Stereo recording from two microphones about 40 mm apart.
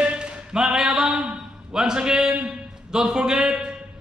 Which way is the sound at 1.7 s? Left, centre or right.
Centre.